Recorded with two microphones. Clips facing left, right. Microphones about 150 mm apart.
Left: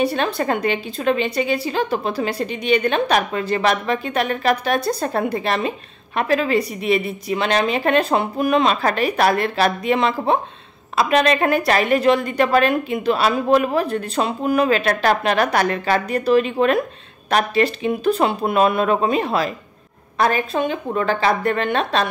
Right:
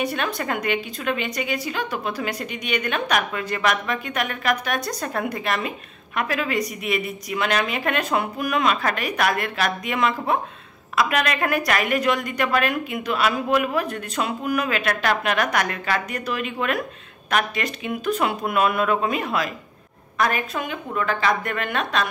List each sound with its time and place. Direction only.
0.0 s a woman's voice: 30° left (ahead or behind)